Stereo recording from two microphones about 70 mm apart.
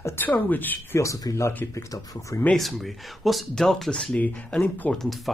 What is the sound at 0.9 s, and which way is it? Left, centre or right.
A man's voice, left.